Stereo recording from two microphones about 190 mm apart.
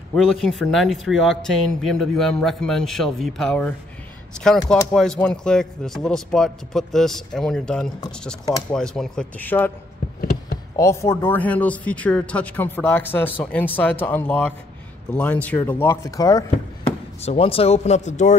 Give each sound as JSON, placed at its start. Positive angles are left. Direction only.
{"t": 0.1, "sound": "speech", "side_deg": 5}
{"t": 10.8, "sound": "speech", "side_deg": 15}
{"t": 15.7, "sound": "speech", "side_deg": 15}
{"t": 17.2, "sound": "speech", "side_deg": 30}